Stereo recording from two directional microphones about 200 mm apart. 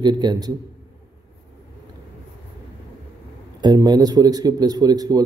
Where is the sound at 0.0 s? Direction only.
20° right (ahead or behind).